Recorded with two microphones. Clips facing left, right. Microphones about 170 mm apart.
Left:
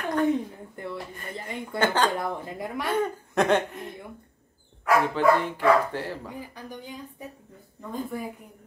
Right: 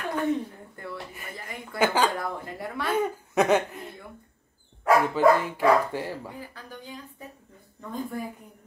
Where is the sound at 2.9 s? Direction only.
5° right (ahead or behind).